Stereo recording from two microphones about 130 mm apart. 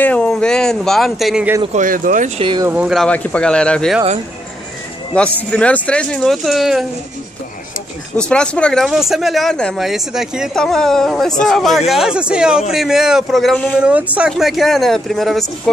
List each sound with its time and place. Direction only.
0.0 s speech: 10° left (ahead or behind)
1.7 s speech: 85° right
2.3 s speech: 40° right (ahead or behind)
2.7 s speech: 10° right (ahead or behind)
3.0 s speech: 10° left (ahead or behind)
5.1 s speech: 10° left (ahead or behind)
8.2 s speech: 5° left (ahead or behind)
13.7 s speech: 10° right (ahead or behind)